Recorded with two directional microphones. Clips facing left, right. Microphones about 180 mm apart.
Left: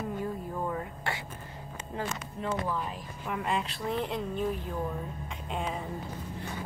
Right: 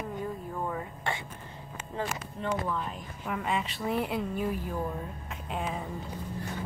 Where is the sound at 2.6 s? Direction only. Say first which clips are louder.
Even; 5° left (ahead or behind).